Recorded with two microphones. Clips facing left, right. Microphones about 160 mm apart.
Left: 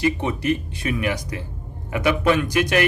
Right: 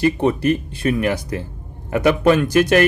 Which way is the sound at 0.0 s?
40° right (ahead or behind).